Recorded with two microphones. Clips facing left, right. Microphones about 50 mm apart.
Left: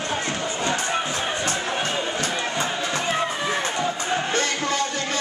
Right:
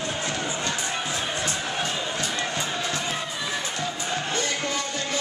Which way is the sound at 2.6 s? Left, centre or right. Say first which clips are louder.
Left 2 dB; centre.